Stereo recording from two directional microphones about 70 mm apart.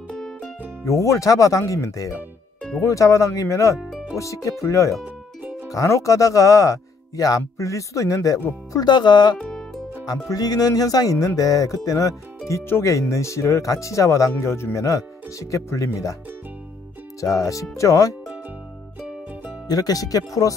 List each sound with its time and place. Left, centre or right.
0.8 s speech: left
5.0 s music: right
5.7 s speech: left
8.7 s speech: left
9.4 s music: centre
10.2 s speech: left
17.2 s speech: left
19.7 s speech: left